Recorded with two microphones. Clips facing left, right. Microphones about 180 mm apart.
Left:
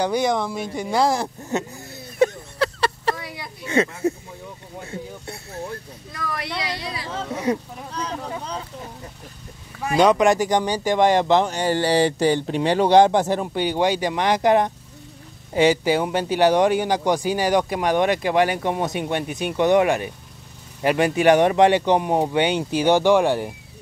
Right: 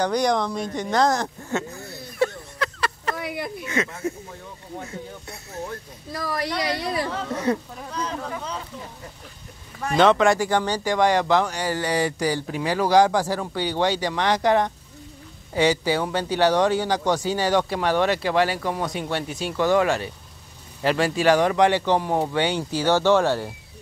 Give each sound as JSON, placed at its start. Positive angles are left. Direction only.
{"t": 0.0, "sound": "speech", "side_deg": 5}
{"t": 2.6, "sound": "a sound", "side_deg": 30}
{"t": 5.2, "sound": "speech", "side_deg": 30}
{"t": 6.1, "sound": "speech", "side_deg": -35}
{"t": 7.2, "sound": "speech", "side_deg": 10}
{"t": 9.8, "sound": "speech", "side_deg": 10}